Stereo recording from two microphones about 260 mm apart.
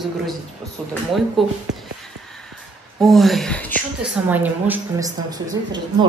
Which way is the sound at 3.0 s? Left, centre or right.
Centre.